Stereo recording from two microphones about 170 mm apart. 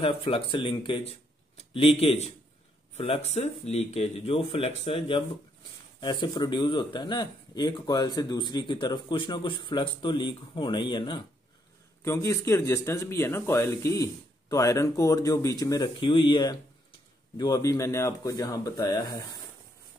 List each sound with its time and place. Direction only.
0.0 s a man's voice: 35° left (ahead or behind)
12.0 s speech: 15° left (ahead or behind)